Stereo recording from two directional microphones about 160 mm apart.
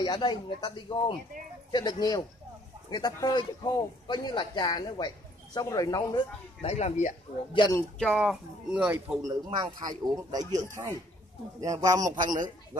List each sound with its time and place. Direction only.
0.0 s a man's voice: 25° left (ahead or behind)
6.6 s speech: 45° left (ahead or behind)
8.0 s speech: centre (ahead or behind)
9.6 s speech: 25° right (ahead or behind)